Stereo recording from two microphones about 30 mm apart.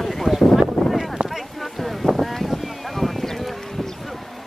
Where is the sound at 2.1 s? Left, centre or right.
Centre.